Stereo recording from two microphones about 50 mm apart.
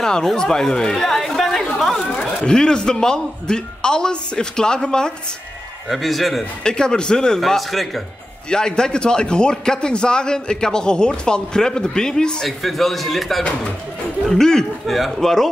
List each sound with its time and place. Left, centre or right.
0.0 s speech: centre
1.8 s chatter: centre
2.4 s a man's voice: centre
5.9 s a man's voice: centre
6.6 s a man's voice: centre
8.5 s a man's voice: centre
12.4 s a man's voice: centre
14.9 s a man's voice: centre